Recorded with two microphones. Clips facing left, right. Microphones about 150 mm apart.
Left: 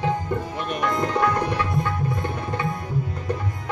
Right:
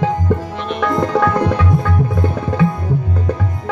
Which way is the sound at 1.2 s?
90° right.